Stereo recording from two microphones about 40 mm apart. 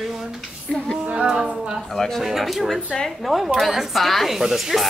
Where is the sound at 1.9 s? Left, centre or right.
Centre.